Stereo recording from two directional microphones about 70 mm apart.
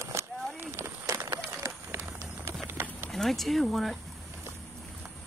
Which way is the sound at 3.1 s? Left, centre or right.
Centre.